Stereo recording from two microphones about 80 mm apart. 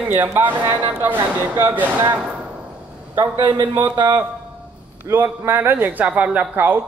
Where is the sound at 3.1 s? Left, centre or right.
Right.